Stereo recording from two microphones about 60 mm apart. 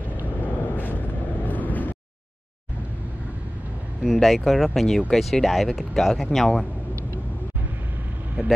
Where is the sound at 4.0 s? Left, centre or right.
Centre.